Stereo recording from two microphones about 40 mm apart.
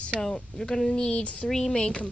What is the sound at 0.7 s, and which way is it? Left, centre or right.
Speech, left.